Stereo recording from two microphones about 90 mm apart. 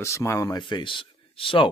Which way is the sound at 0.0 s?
30° left (ahead or behind).